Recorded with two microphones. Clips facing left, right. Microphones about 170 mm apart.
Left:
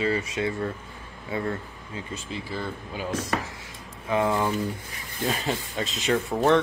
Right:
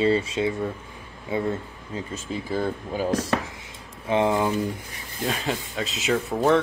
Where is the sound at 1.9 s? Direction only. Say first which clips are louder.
Right 4 dB; 45° right (ahead or behind).